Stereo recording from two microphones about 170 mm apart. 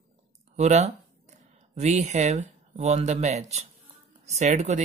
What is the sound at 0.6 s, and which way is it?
Speech, 40° right (ahead or behind).